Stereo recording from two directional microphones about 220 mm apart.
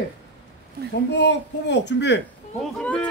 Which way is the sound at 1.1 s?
50° left (ahead or behind).